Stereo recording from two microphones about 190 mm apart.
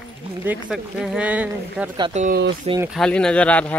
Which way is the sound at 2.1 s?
40° right (ahead or behind).